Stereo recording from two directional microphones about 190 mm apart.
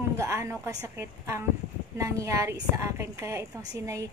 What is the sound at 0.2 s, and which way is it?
A woman's voice, 15° right (ahead or behind).